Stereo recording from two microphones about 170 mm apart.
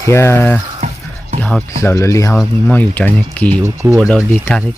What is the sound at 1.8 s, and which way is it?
Speech, 15° left (ahead or behind).